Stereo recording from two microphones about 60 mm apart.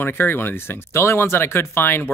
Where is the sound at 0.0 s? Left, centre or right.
Left.